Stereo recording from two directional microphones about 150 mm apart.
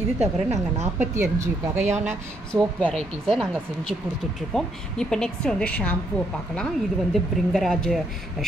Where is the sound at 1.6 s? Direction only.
15° right (ahead or behind).